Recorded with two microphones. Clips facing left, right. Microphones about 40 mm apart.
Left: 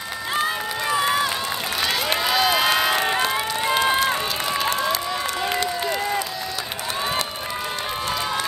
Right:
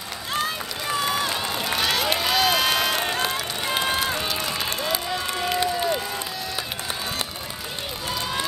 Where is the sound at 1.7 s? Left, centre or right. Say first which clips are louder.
Even; centre.